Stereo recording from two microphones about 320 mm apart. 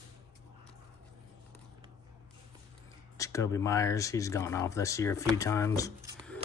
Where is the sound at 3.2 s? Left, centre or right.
Centre.